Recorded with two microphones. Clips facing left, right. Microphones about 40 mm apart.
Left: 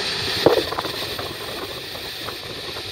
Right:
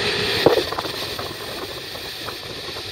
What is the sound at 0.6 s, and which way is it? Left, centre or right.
Vehicle, centre.